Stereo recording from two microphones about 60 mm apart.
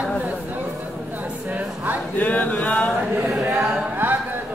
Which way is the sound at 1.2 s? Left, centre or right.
Right.